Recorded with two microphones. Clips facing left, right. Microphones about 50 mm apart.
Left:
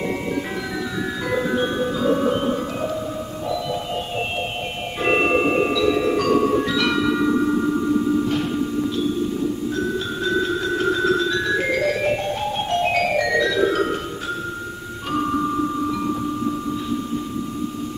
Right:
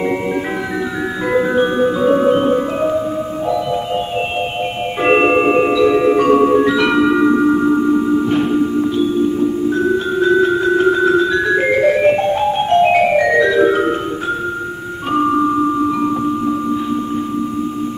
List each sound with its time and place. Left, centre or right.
1.3 s music: right
5.0 s music: right
16.0 s music: right